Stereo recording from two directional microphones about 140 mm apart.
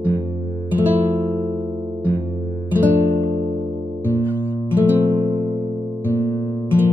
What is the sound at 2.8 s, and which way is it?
Music, 15° right (ahead or behind).